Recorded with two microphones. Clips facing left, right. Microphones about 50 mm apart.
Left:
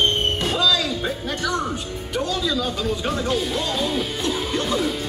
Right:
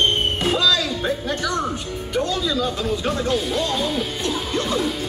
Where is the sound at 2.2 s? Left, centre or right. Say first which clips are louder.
Right 1 dB; right.